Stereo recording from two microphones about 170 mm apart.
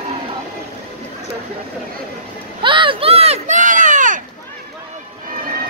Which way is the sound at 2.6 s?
30° right (ahead or behind).